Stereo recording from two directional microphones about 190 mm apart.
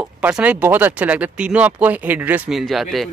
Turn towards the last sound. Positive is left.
turn(degrees=0)  # may be behind; listen again after turning